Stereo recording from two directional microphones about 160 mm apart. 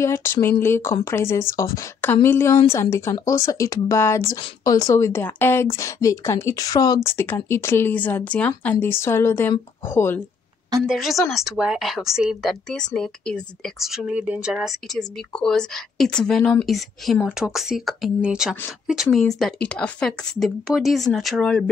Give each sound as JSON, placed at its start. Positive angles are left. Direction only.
{"t": 0.0, "sound": "a woman's voice", "side_deg": 15}
{"t": 10.9, "sound": "speech", "side_deg": 0}